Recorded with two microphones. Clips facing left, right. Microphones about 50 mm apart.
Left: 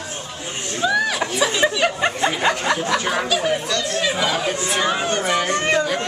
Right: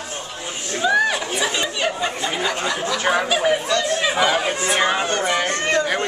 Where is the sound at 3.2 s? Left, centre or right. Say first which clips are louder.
Right 2 dB; centre.